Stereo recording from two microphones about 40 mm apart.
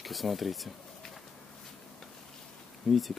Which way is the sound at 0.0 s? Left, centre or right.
Centre.